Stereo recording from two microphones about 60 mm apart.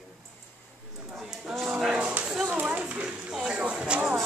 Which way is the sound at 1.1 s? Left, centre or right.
Centre.